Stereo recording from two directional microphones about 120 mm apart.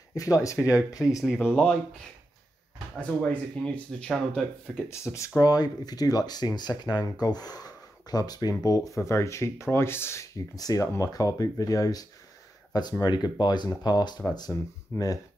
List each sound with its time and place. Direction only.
0.1 s speech: 30° left (ahead or behind)
1.2 s speech: 5° right (ahead or behind)
3.0 s speech: 10° left (ahead or behind)
4.8 s speech: 25° left (ahead or behind)
14.9 s speech: 20° left (ahead or behind)